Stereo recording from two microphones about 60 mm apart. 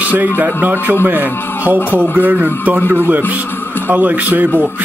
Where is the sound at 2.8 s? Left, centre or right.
Right.